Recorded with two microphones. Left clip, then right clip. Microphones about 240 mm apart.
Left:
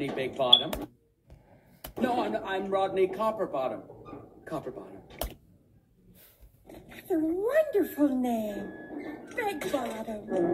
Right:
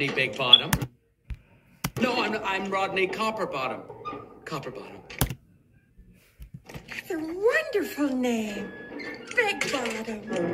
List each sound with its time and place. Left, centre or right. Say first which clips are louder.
0.0 s speech: right 4 dB; right
2.0 s a man's voice: right 2 dB; right
6.7 s speech: left 2 dB; right